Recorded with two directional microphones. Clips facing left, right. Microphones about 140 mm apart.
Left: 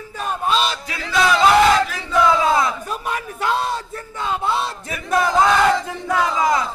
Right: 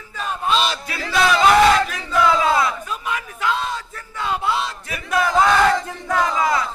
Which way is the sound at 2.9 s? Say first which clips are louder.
Left 1 dB; 40° left (ahead or behind).